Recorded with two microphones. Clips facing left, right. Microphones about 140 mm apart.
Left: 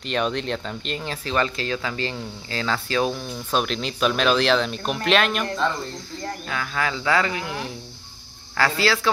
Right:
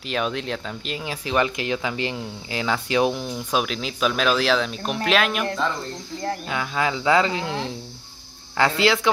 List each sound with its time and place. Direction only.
0.0 s speech: 5° right (ahead or behind)
3.6 s speech: 5° right (ahead or behind)
6.4 s speech: 20° right (ahead or behind)